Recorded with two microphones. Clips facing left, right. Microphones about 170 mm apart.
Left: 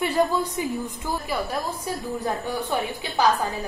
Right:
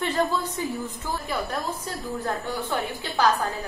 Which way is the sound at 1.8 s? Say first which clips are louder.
Left 3 dB; 15° left (ahead or behind).